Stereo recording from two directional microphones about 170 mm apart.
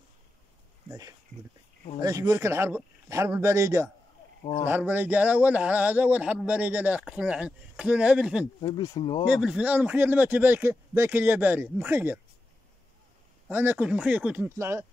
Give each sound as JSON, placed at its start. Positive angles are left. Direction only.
{"t": 0.8, "sound": "speech", "side_deg": -20}
{"t": 8.5, "sound": "speech", "side_deg": 25}
{"t": 9.2, "sound": "speech", "side_deg": -5}
{"t": 13.5, "sound": "speech", "side_deg": -10}